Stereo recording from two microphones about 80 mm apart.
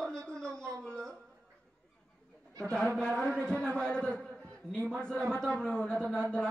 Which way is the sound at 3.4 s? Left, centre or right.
Centre.